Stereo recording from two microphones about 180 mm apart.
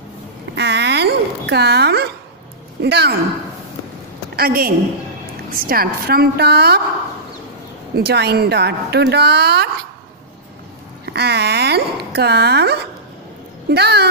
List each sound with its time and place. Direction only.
0.6 s babbling: 70° right (ahead or behind)
2.8 s speech: 65° right (ahead or behind)
4.4 s a woman's voice: 55° right (ahead or behind)
7.9 s a woman's voice: 65° right (ahead or behind)
11.1 s a woman's voice: 65° right (ahead or behind)